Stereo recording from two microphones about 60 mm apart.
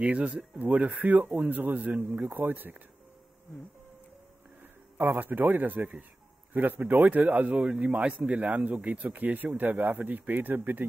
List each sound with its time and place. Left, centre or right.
0.0 s speech: right
4.9 s speech: right
8.9 s speech: right